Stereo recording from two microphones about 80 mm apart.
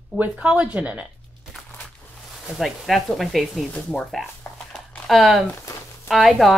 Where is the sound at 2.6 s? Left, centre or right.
Centre.